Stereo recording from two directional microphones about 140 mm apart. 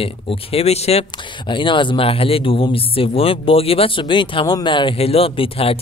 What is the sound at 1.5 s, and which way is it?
Speech, 35° left (ahead or behind).